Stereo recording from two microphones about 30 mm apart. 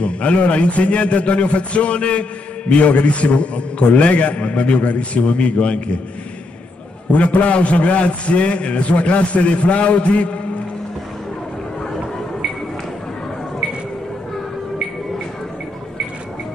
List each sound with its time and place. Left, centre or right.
0.0 s a man's voice: left
7.1 s a man's voice: left